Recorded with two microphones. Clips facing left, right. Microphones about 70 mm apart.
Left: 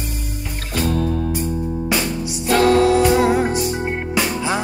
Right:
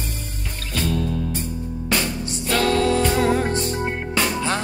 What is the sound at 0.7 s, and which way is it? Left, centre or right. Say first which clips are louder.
Music: left 3 dB; left.